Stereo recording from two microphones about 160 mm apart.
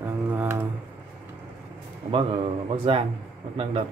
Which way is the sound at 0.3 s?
15° right (ahead or behind).